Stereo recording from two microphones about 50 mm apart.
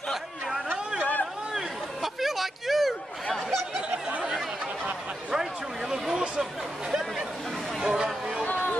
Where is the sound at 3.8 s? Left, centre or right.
Right.